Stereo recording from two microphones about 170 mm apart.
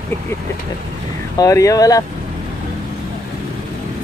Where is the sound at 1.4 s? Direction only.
20° left (ahead or behind).